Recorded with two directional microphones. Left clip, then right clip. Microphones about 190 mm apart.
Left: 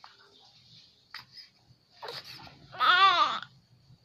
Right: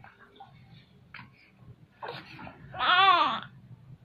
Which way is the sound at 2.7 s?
30° left (ahead or behind).